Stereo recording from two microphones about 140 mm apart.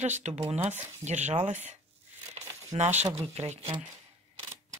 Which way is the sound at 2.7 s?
35° right (ahead or behind).